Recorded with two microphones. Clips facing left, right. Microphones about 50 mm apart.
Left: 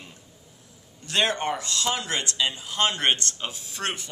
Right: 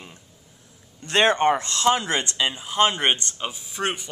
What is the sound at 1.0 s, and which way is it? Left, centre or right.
Speech, right.